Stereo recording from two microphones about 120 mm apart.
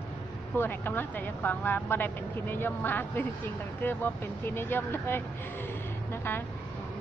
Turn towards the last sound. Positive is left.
turn(degrees=20)  # may be behind; listen again after turning